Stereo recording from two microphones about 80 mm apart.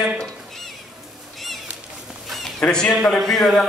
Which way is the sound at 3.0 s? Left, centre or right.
Centre.